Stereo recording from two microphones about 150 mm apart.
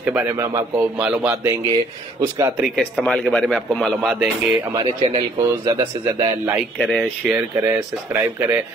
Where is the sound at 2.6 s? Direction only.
Centre (ahead or behind).